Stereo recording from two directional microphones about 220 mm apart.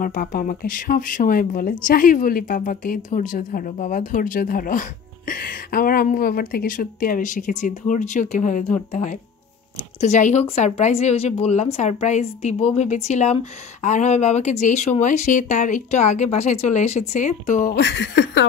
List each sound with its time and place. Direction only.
0.0 s a woman's voice: 40° left (ahead or behind)
9.9 s a woman's voice: 30° left (ahead or behind)
17.7 s speech: 55° left (ahead or behind)